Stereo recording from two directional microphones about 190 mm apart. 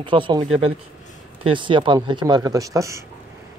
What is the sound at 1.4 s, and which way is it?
Speech, 25° right (ahead or behind).